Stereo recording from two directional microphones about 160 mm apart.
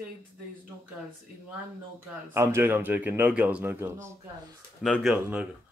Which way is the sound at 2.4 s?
15° right (ahead or behind).